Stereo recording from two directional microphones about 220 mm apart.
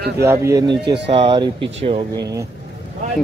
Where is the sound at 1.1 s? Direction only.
25° right (ahead or behind).